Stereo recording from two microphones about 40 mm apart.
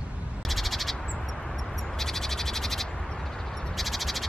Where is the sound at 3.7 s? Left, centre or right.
Centre.